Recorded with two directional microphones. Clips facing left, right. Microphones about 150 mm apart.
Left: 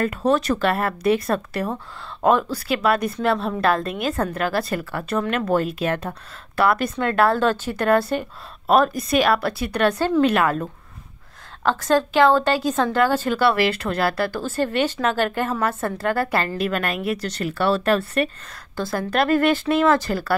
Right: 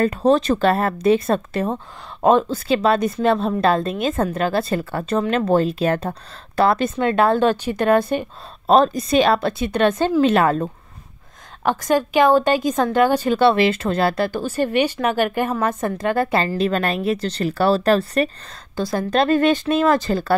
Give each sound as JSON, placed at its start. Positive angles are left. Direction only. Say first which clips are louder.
{"t": 0.0, "sound": "a woman's voice", "louder": "right 4 dB", "side_deg": -35}
{"t": 11.6, "sound": "a woman's voice", "louder": "right 1 dB", "side_deg": -15}
{"t": 18.8, "sound": "a woman's voice", "louder": "right 3 dB", "side_deg": -20}